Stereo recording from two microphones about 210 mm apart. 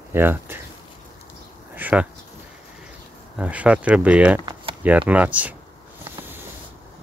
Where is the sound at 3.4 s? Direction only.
5° right (ahead or behind).